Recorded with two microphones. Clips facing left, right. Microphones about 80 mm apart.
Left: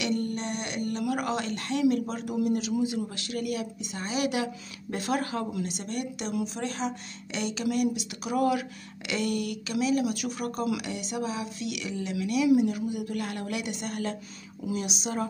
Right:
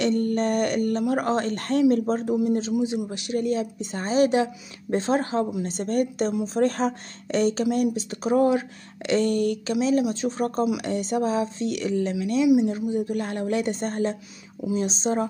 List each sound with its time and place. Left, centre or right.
0.0 s a woman's voice: right